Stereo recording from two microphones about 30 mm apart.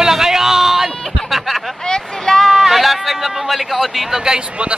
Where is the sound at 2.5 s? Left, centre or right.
Centre.